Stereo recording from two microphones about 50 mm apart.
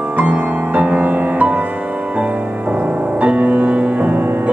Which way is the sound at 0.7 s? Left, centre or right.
Right.